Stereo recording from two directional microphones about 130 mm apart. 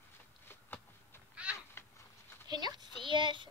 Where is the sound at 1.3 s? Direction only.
10° right (ahead or behind).